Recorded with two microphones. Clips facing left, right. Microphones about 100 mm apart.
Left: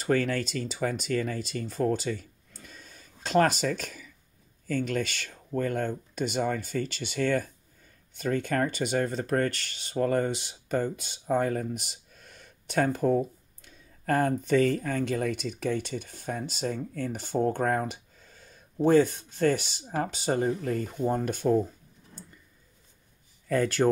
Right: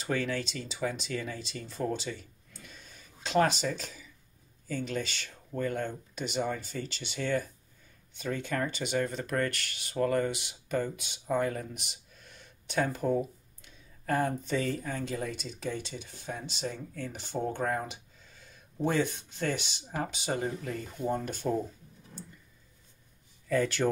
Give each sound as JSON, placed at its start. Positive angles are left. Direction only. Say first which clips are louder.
{"t": 0.0, "sound": "speech", "louder": "left 5 dB", "side_deg": 50}
{"t": 23.5, "sound": "speech", "louder": "left 3 dB", "side_deg": 45}